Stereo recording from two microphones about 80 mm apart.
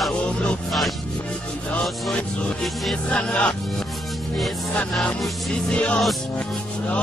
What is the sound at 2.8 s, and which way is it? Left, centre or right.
Music, centre.